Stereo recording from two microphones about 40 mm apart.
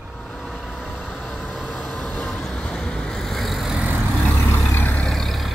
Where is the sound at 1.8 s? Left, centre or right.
Centre.